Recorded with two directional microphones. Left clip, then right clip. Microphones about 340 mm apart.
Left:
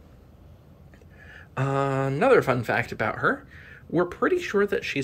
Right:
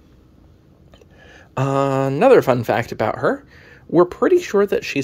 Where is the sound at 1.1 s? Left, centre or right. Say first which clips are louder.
Right 7 dB; right.